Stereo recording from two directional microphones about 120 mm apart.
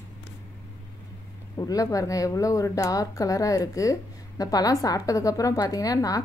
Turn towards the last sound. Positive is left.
turn(degrees=30)  # may be behind; listen again after turning